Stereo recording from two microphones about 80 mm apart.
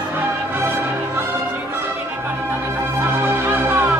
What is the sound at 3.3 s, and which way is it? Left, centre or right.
Music, right.